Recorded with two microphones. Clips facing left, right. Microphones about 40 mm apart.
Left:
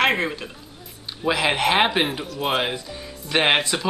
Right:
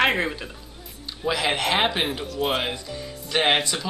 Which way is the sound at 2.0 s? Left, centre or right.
Centre.